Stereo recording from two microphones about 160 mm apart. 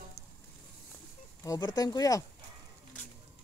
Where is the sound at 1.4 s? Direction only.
25° left (ahead or behind).